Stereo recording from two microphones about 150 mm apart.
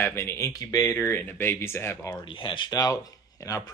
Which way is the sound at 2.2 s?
35° left (ahead or behind).